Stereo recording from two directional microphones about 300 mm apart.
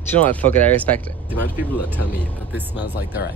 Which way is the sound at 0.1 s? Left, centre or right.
Centre.